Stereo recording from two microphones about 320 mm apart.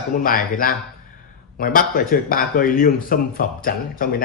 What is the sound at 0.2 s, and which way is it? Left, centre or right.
Speech, left.